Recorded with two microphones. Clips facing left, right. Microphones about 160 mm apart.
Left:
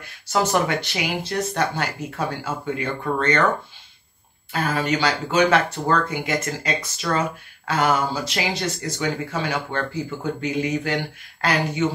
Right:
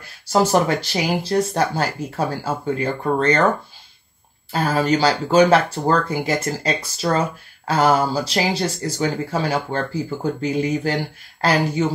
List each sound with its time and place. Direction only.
0.3 s speech: 35° right (ahead or behind)
4.5 s speech: 35° right (ahead or behind)